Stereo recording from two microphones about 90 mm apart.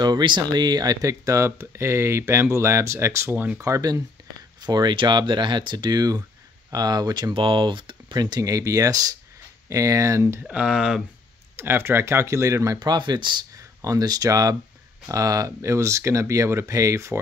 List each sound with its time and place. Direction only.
0.0 s speech: 55° right (ahead or behind); by 3.6 s 20° right (ahead or behind)
3.6 s speech: 40° right (ahead or behind)
4.6 s speech: 50° right (ahead or behind)
7.3 s speech: 70° right (ahead or behind); by 10.4 s 35° right (ahead or behind)
10.4 s speech: 10° right (ahead or behind)
11.5 s speech: 25° right (ahead or behind)
12.7 s speech: 55° right (ahead or behind)
13.8 s speech: 45° right (ahead or behind)